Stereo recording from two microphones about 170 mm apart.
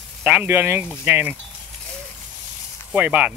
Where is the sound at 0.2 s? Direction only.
10° right (ahead or behind).